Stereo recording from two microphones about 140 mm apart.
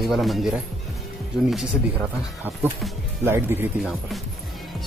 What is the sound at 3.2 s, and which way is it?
Speech, 15° right (ahead or behind).